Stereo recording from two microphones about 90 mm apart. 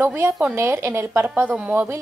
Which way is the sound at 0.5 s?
30° right (ahead or behind).